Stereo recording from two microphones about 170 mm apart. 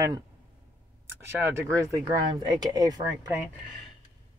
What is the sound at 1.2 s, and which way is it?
Speech, 15° right (ahead or behind).